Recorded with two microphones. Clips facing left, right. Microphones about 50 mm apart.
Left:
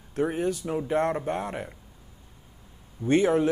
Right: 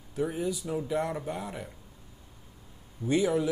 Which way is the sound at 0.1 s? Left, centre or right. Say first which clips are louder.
Left 4 dB; left.